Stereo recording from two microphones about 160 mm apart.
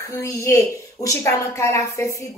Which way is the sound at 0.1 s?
20° left (ahead or behind).